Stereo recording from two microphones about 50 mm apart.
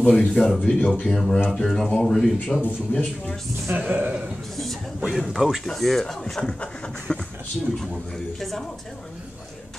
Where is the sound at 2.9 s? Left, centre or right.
Left.